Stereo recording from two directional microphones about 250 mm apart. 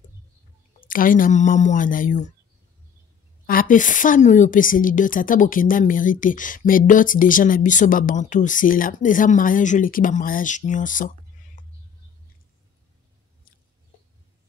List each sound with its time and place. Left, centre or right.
0.7 s a woman's voice: left
3.4 s a woman's voice: left
11.6 s a sound: left